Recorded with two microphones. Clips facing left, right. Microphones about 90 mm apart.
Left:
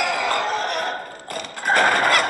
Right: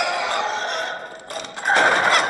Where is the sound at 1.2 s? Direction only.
55° left (ahead or behind).